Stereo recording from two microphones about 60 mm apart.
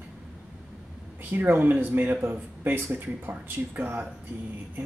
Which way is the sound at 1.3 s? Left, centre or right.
Right.